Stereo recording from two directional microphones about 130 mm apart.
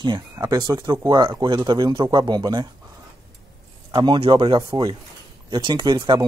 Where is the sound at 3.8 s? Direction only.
30° right (ahead or behind).